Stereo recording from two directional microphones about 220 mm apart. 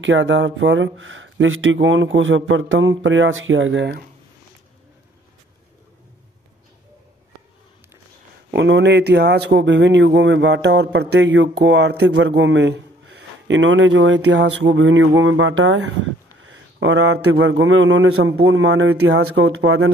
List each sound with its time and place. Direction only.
0.0 s speech: 60° right (ahead or behind)
8.5 s a man's voice: 55° right (ahead or behind); by 19.9 s 75° right (ahead or behind)